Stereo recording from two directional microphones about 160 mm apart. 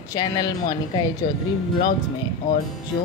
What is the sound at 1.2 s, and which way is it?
Speech, 55° left (ahead or behind).